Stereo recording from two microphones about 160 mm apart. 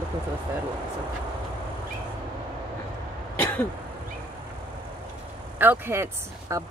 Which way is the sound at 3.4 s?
15° left (ahead or behind).